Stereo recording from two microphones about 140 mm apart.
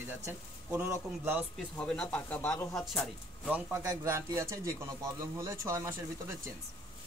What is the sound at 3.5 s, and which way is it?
Speech, 15° right (ahead or behind).